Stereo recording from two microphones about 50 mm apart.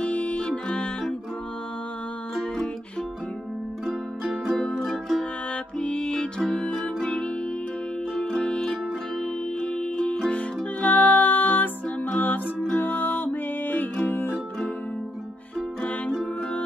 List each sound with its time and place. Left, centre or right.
0.0 s music: left
3.8 s music: centre
5.8 s music: centre
10.3 s music: left